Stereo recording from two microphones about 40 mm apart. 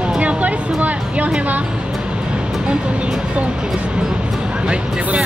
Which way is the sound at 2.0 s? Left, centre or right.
Right.